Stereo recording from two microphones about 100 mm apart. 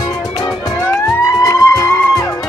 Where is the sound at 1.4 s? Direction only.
35° left (ahead or behind).